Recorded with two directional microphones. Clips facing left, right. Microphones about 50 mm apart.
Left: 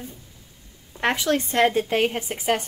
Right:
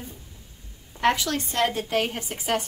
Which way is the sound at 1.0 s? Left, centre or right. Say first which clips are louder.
Left 1 dB; left.